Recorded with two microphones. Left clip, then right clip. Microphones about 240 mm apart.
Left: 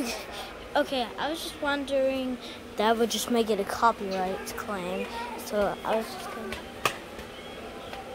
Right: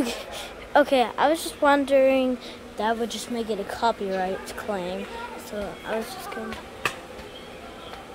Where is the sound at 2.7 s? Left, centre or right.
Centre.